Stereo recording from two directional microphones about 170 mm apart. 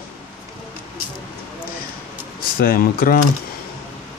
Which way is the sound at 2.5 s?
60° left (ahead or behind).